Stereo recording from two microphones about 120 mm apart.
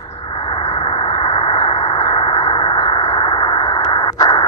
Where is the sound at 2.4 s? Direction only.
40° left (ahead or behind).